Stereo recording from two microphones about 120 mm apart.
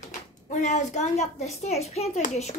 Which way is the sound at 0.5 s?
90° left.